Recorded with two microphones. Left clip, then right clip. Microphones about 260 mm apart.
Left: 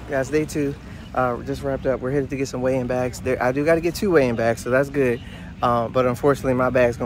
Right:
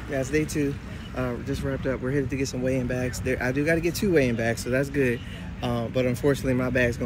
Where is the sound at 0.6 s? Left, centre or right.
Left.